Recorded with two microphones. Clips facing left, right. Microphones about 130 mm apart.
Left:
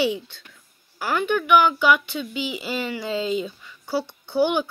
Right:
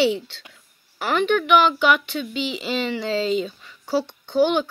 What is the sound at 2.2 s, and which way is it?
Speech, 10° left (ahead or behind).